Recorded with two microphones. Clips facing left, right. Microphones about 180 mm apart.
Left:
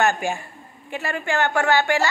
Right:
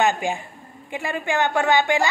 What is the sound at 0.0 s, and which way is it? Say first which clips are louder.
A woman's voice: even; 15° right (ahead or behind).